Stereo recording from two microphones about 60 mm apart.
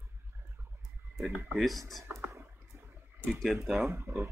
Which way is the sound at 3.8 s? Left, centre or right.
Right.